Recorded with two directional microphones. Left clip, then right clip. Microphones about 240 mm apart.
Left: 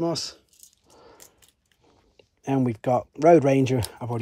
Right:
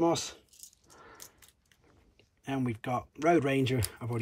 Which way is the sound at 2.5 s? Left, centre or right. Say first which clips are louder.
Left 10 dB; left.